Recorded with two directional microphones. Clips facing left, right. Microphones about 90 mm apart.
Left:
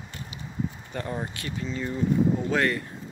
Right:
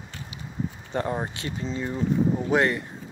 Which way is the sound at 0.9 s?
30° right (ahead or behind).